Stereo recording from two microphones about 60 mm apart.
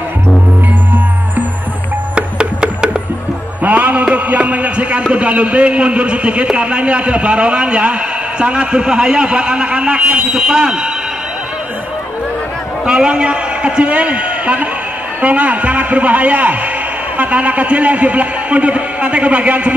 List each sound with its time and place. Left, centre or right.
2.1 s music: centre
3.6 s a sound: right
5.1 s a man's voice: centre
12.8 s a man's voice: centre